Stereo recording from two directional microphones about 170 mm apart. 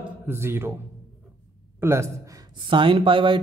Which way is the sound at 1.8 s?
15° right (ahead or behind).